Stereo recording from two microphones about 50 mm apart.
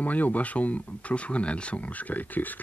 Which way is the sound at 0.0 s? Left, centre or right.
Left.